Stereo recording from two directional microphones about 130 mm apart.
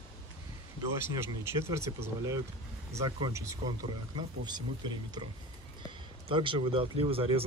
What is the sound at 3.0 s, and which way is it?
Speech, 40° right (ahead or behind).